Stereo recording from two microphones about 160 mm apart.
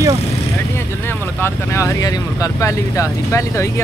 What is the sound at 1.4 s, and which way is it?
Speech, 15° left (ahead or behind).